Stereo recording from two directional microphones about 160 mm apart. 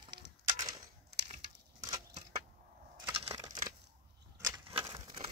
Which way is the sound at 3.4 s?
20° right (ahead or behind).